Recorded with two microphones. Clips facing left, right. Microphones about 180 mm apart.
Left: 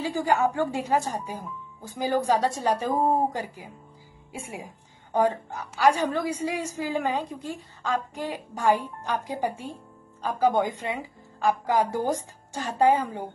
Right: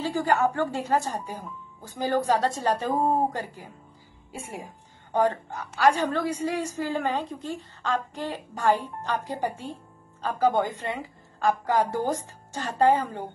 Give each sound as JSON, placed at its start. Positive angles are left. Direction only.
{"t": 0.0, "sound": "a woman's voice", "side_deg": 10}